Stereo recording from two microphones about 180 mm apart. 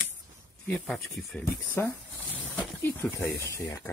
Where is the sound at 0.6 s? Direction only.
5° left (ahead or behind).